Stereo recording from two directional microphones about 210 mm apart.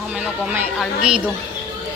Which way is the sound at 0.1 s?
5° right (ahead or behind).